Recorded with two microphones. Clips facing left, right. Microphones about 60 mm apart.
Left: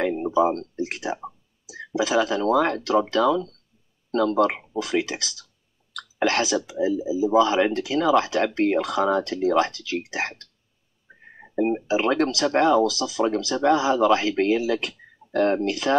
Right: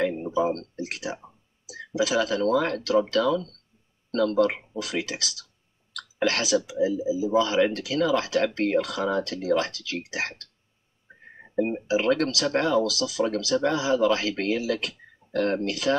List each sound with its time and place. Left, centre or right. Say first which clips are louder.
0.3 s speech: left 4 dB; left
11.5 s speech: left 2 dB; left